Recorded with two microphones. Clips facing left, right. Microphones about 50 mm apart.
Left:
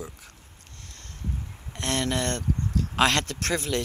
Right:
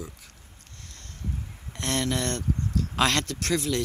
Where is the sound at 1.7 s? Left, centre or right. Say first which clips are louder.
Even; centre.